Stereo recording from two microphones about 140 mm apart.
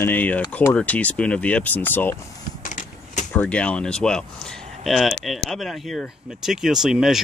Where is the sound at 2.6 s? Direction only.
65° left (ahead or behind).